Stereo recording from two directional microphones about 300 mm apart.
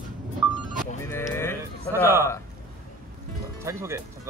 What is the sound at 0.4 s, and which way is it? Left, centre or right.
Vehicle, centre.